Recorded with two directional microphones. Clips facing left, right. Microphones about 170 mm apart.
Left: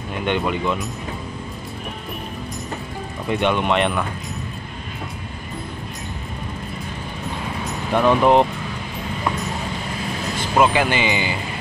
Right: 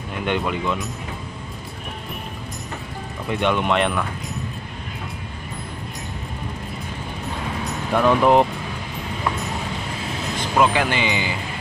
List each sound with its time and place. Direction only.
0.2 s speech: centre (ahead or behind)
3.3 s speech: centre (ahead or behind)
7.9 s speech: 5° left (ahead or behind)
10.6 s speech: 5° left (ahead or behind)